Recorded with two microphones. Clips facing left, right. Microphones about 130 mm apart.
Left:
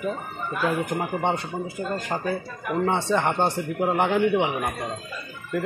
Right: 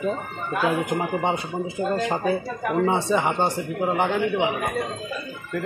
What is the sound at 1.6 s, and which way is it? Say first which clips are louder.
A man's voice: right 5 dB; 25° right (ahead or behind).